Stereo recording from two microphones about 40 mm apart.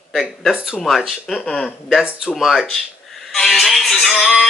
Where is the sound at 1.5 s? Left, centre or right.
Centre.